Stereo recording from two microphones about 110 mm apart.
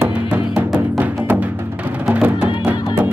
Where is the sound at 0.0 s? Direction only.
15° right (ahead or behind).